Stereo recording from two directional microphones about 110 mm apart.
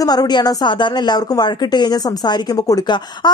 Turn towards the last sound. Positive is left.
turn(degrees=40)  # may be behind; listen again after turning